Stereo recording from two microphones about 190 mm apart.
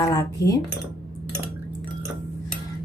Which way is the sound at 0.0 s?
20° left (ahead or behind).